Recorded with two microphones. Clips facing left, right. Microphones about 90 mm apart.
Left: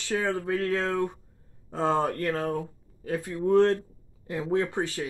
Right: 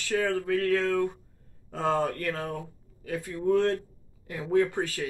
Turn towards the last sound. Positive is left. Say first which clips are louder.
# right 2 dB
turn(degrees=25)  # may be behind; listen again after turning